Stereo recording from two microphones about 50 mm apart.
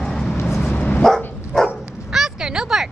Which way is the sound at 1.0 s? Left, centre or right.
Centre.